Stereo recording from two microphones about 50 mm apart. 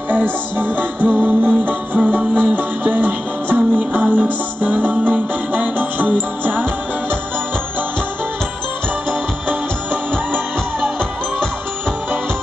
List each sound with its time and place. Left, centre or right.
0.1 s music: right